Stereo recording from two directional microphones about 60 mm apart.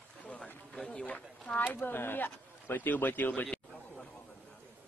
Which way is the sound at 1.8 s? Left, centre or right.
Left.